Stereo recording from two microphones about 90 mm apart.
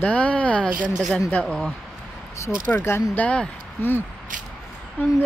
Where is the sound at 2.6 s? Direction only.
25° left (ahead or behind).